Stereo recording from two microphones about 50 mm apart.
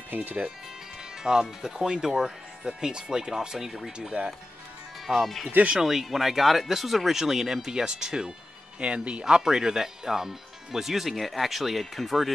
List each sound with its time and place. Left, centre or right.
0.1 s speech: right
1.2 s speech: centre
9.2 s speech: centre